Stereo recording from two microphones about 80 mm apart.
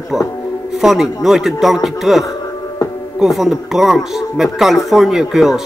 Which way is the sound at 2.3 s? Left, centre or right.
Left.